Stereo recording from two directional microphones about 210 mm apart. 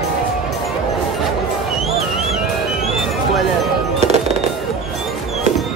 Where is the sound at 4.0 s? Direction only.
30° right (ahead or behind).